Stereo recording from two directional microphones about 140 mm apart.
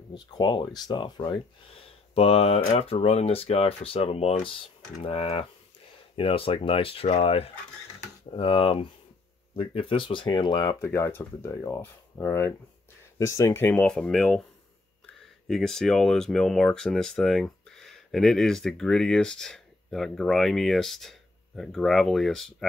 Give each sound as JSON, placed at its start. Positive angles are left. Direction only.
{"t": 0.1, "sound": "speech", "side_deg": 30}
{"t": 2.1, "sound": "speech", "side_deg": 45}
{"t": 10.9, "sound": "speech", "side_deg": 15}